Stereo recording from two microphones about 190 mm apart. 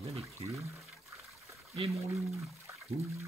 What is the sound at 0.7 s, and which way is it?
Water, centre (ahead or behind).